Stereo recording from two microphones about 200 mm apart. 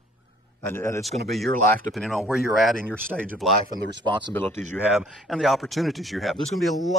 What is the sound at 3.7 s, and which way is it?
Speech, 20° right (ahead or behind).